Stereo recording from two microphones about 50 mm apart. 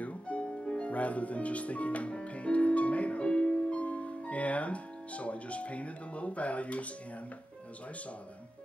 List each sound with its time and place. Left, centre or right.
0.0 s music: left